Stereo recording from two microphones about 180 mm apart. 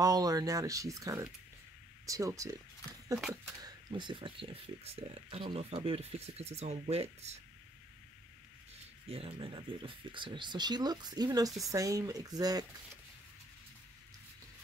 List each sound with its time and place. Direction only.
0.0 s speech: 20° right (ahead or behind)
3.6 s speech: 25° right (ahead or behind)
9.1 s speech: 30° right (ahead or behind)